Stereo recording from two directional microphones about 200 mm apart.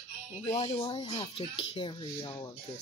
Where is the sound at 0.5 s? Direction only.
25° left (ahead or behind).